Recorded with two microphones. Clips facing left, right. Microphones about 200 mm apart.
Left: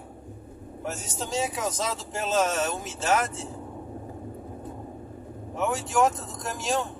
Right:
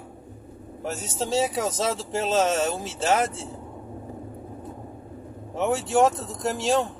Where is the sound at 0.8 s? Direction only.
35° right (ahead or behind).